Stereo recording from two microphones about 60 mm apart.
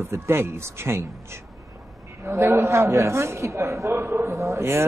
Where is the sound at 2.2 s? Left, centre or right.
Right.